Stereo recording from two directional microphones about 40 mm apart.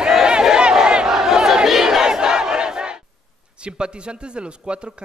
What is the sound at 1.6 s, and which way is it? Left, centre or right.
Battle cry, centre.